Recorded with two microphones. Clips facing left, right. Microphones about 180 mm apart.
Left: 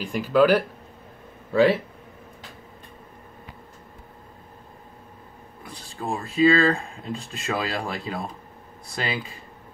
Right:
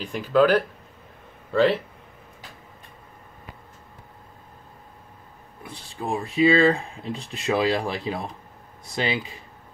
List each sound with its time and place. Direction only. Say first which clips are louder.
0.0 s speech: even; 5° left (ahead or behind)
5.6 s speech: right 1 dB; 20° right (ahead or behind)